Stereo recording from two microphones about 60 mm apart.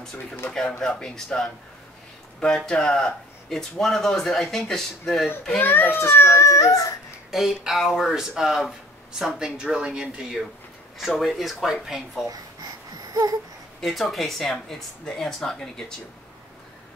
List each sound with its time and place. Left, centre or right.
0.5 s speech: centre
5.6 s a child's voice: left
6.4 s speech: left
7.2 s speech: centre
11.0 s speech: centre
12.9 s a sound: right
13.7 s speech: centre